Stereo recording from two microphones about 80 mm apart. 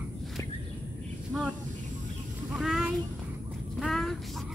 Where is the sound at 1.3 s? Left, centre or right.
Centre.